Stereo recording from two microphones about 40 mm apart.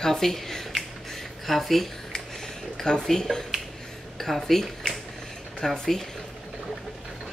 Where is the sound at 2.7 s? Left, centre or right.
Centre.